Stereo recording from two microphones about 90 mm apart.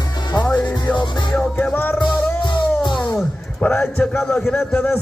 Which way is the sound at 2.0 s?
55° left (ahead or behind).